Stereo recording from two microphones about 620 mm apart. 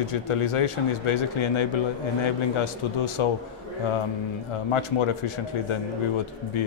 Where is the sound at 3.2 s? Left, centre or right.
Left.